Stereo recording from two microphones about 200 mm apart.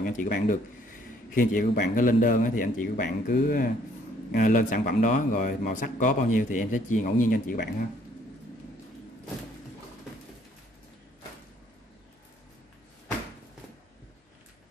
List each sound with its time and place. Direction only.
0.0 s a man's voice: 40° left (ahead or behind)